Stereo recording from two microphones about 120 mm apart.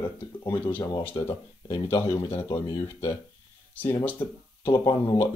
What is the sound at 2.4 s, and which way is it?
Speech, 45° left (ahead or behind).